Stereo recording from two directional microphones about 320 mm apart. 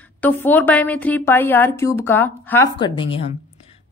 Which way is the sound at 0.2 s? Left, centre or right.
Centre.